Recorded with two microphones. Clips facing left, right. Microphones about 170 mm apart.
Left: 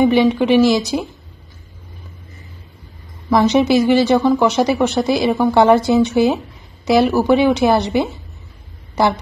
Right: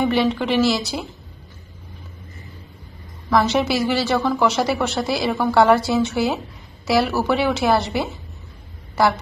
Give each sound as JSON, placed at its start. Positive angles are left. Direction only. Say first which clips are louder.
{"t": 0.0, "sound": "speech", "louder": "left 6 dB", "side_deg": 15}
{"t": 3.3, "sound": "speech", "louder": "left 5 dB", "side_deg": 20}